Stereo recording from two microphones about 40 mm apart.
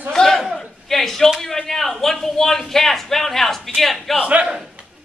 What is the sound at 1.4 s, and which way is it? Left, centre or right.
A man's voice, centre.